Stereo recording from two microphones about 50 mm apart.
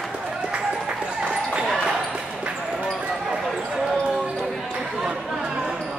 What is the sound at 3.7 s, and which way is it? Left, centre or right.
Basketball bounce, centre.